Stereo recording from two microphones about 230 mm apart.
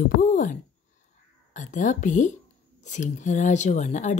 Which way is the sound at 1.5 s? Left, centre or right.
Left.